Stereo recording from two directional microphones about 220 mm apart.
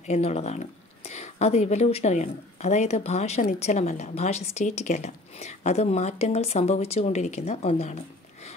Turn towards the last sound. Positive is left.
turn(degrees=30)  # may be behind; listen again after turning